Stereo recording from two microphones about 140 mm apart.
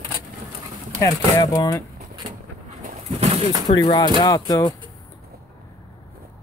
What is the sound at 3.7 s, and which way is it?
Speech, 30° left (ahead or behind).